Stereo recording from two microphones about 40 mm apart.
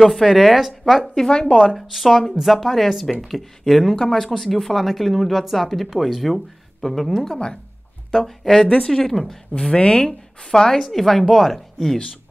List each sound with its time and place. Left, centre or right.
0.0 s a woman's voice: centre
1.1 s speech: centre
1.8 s a woman's voice: centre
8.5 s speech: centre
9.1 s a woman's voice: centre
9.5 s speech: left
10.0 s a woman's voice: centre